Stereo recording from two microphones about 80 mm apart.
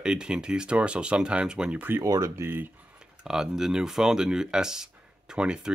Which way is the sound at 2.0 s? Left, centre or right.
Right.